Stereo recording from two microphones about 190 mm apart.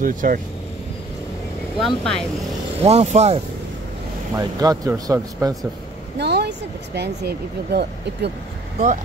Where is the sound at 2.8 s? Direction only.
35° right (ahead or behind).